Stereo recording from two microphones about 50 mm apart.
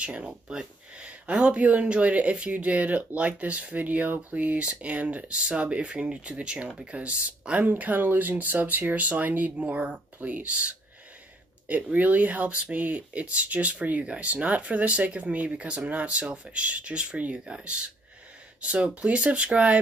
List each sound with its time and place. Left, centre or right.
0.0 s speech: right
0.3 s speech: centre